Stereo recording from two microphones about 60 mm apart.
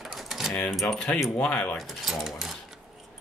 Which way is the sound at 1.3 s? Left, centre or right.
Left.